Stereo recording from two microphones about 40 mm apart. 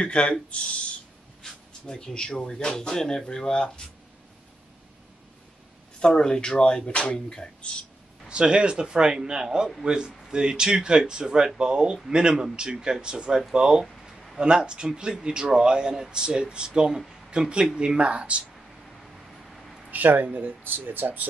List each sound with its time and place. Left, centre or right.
0.0 s speech: left
1.4 s speech: centre
5.9 s speech: centre
8.3 s a man's voice: right
19.9 s speech: right